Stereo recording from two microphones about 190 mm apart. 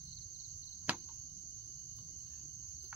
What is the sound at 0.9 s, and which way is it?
Cricket, 5° right (ahead or behind).